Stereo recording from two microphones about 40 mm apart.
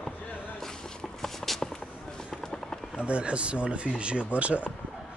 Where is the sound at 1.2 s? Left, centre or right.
Centre.